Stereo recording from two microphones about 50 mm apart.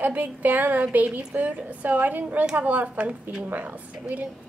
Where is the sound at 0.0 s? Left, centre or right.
Right.